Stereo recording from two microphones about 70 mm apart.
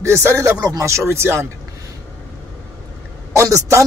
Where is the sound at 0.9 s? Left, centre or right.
Right.